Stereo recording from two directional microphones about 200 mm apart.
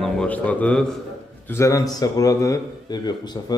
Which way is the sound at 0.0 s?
5° left (ahead or behind).